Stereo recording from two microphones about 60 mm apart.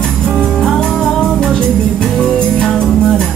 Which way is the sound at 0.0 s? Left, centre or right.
Centre.